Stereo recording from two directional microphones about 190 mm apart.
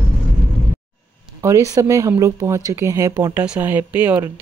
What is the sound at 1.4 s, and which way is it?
Speech, 15° right (ahead or behind).